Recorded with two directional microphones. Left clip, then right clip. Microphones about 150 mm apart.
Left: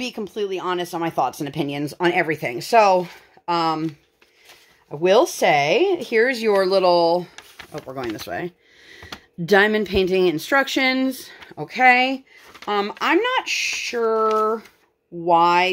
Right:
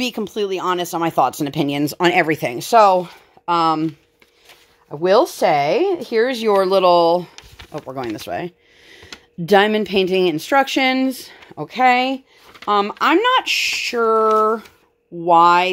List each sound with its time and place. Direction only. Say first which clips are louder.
0.0 s speech: right 4 dB; 50° right (ahead or behind)
2.6 s speech: right 3 dB; 30° right (ahead or behind)
2.9 s speech: right 2 dB; 15° right (ahead or behind)
3.4 s speech: right 4 dB; 40° right (ahead or behind)
4.9 s speech: right 2 dB; 20° right (ahead or behind); by 7.2 s 40° right (ahead or behind)
7.3 s a sound: right 3 dB; 5° right (ahead or behind)
7.8 s speech: right 3 dB; 25° right (ahead or behind)
8.2 s a sound: right 3 dB; 25° right (ahead or behind)
9.5 s speech: right 2 dB; 20° right (ahead or behind)
12.6 s speech: right 5 dB; 35° right (ahead or behind)
13.0 s speech: right 4 dB; 45° right (ahead or behind)
15.2 s speech: right 4 dB; 40° right (ahead or behind)